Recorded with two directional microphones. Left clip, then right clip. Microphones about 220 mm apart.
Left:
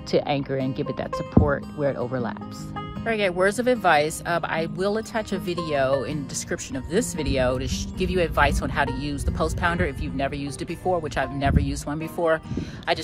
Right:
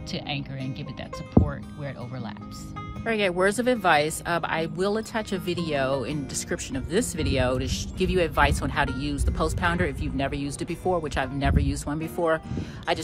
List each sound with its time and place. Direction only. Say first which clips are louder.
0.1 s speech: left 10 dB; centre (ahead or behind)
1.4 s speech: left 3 dB; 20° right (ahead or behind)
3.1 s speech: left 1 dB; 5° right (ahead or behind)